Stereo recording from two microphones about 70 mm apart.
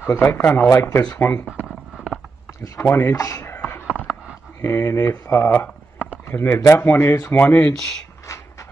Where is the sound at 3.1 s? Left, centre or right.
Left.